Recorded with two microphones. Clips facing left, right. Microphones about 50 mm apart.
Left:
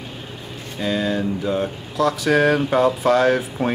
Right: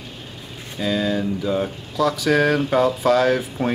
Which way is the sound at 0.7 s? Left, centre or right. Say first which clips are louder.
Even; centre.